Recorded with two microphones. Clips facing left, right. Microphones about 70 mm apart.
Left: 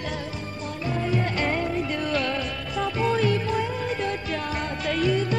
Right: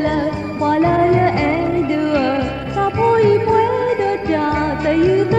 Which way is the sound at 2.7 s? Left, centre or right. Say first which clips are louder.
Right 10 dB; right.